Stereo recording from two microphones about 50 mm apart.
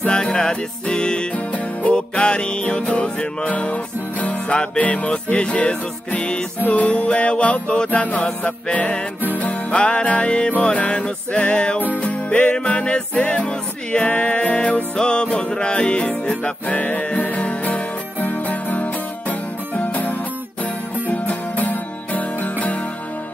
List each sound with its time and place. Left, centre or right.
0.0 s music: centre
1.3 s music: left
11.8 s music: left